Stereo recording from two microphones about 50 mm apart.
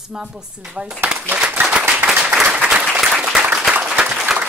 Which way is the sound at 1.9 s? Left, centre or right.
Right.